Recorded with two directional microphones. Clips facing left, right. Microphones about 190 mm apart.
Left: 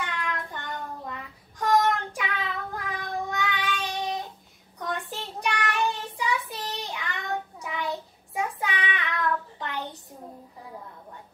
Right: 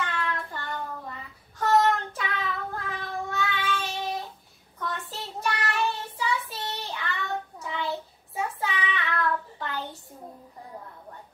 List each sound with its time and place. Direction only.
0.0 s child singing: 15° left (ahead or behind)